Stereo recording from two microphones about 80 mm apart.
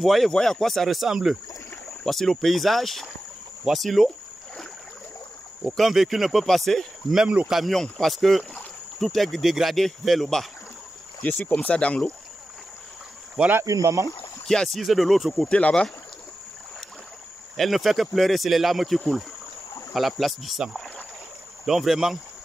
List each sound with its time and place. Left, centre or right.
0.0 s speech: centre
5.7 s speech: centre
7.2 s speech: centre
7.7 s speech: centre
11.2 s speech: left
13.7 s speech: right
14.4 s speech: centre
15.4 s speech: centre
17.6 s speech: centre